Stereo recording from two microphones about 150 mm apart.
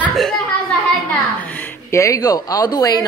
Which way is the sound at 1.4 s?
10° left (ahead or behind).